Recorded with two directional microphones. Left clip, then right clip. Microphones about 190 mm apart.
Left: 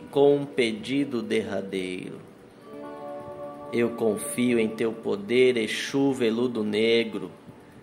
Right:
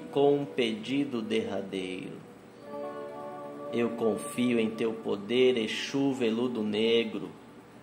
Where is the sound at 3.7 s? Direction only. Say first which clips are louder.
Left 4 dB; 20° left (ahead or behind).